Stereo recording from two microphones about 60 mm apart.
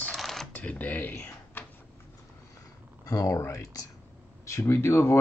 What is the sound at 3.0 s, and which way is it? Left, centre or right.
Speech, left.